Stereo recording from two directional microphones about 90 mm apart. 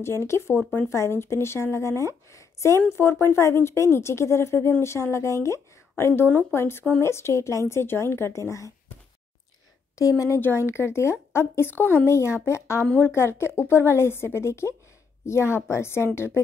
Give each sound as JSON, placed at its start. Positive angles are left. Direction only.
{"t": 0.0, "sound": "a woman's voice", "side_deg": 30}
{"t": 9.9, "sound": "a woman's voice", "side_deg": 35}